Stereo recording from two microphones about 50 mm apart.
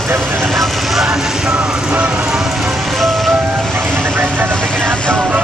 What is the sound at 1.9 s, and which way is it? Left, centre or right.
Speech, centre.